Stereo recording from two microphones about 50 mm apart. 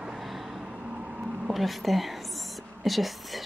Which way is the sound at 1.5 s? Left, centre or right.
Centre.